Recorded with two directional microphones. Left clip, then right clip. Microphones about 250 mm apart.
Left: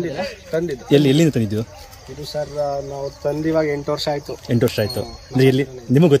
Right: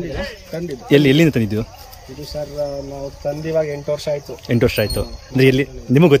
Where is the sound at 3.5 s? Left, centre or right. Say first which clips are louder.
Right 2 dB; centre.